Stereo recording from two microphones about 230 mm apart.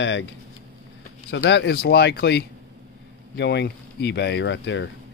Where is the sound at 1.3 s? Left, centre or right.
Left.